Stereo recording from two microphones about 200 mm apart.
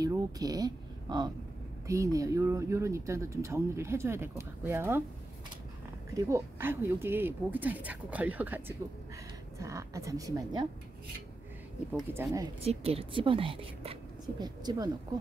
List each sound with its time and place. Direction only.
0.0 s speech: 20° right (ahead or behind)
6.1 s speech: 15° right (ahead or behind)
11.9 s speech: 10° right (ahead or behind)
12.5 s a woman's voice: 30° right (ahead or behind)